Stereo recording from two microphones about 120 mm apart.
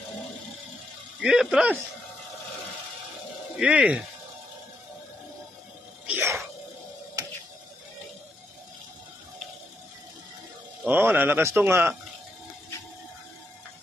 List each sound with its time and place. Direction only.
1.2 s speech: 5° right (ahead or behind)
3.5 s a man's voice: 10° right (ahead or behind)
6.0 s music: 15° right (ahead or behind)
10.9 s a man's voice: 15° right (ahead or behind)